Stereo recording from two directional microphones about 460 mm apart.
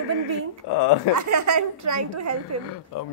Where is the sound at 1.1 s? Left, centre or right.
Right.